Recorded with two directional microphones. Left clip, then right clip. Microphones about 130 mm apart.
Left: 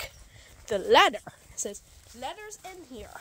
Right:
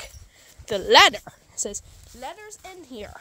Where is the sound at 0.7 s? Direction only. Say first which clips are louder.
Right 5 dB; 15° right (ahead or behind).